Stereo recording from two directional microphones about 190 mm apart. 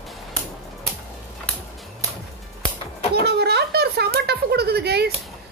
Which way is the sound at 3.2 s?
60° right (ahead or behind).